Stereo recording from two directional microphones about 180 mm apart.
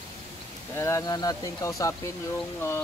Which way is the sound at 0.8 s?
15° left (ahead or behind).